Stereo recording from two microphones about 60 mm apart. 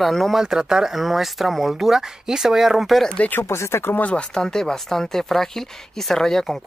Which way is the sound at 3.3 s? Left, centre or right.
Left.